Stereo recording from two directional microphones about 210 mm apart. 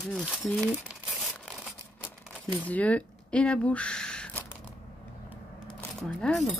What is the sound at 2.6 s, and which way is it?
Speech, 5° left (ahead or behind).